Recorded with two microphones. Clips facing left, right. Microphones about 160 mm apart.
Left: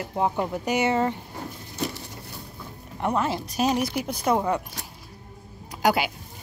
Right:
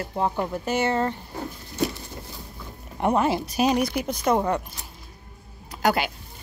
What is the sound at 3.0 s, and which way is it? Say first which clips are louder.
Speech: right 4 dB; 15° right (ahead or behind).